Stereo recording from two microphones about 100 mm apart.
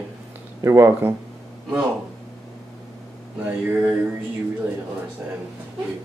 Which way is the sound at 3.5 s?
15° right (ahead or behind).